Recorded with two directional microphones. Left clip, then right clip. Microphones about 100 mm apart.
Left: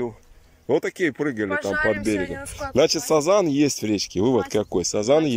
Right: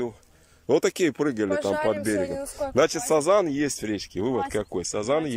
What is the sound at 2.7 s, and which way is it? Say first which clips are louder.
Speech: left 3 dB; 15° left (ahead or behind).